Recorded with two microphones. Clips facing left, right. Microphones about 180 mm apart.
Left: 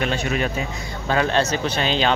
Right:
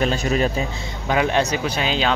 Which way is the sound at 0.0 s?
35° right (ahead or behind).